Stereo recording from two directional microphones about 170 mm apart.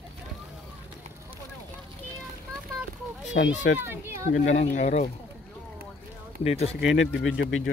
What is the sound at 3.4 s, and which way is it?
Speech, 90° left.